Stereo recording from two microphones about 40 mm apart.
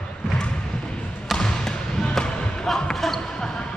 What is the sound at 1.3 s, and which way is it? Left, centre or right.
Basketball bounce, centre.